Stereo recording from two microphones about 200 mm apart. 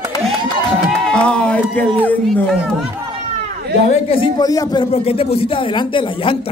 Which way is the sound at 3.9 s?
25° left (ahead or behind).